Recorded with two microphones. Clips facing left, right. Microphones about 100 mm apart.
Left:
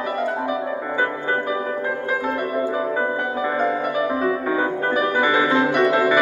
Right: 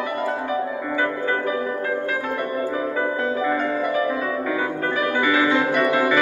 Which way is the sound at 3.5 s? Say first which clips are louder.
Left 1 dB; 30° left (ahead or behind).